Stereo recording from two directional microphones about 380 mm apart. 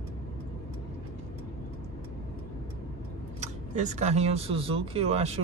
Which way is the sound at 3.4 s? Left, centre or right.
Centre.